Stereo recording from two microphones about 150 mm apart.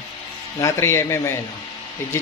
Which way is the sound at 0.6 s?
15° left (ahead or behind).